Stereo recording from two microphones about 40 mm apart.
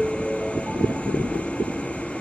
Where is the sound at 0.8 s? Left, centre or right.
Left.